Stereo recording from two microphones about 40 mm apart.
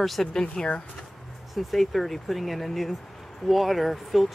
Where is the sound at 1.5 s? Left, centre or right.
Centre.